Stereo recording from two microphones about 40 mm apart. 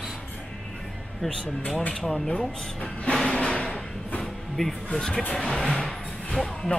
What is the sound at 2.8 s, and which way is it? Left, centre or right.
Music, left.